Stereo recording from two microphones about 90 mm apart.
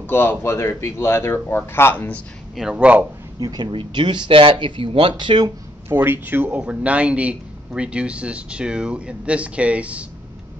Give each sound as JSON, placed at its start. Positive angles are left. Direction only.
{"t": 0.0, "sound": "speech", "side_deg": 25}
{"t": 2.5, "sound": "a man's voice", "side_deg": -10}
{"t": 3.3, "sound": "speech", "side_deg": -55}
{"t": 5.1, "sound": "speech", "side_deg": -55}
{"t": 5.9, "sound": "a man's voice", "side_deg": -25}